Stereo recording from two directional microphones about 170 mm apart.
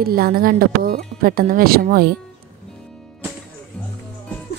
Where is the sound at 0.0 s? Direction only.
60° right (ahead or behind).